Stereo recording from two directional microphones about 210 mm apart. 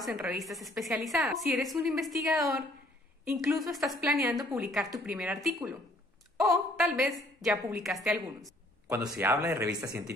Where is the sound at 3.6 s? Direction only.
Centre (ahead or behind).